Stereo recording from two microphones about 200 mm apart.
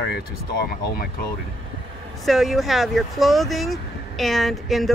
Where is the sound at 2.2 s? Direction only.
Centre (ahead or behind).